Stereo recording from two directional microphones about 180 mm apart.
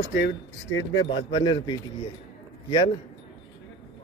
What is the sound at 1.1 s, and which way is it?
Speech, 25° left (ahead or behind).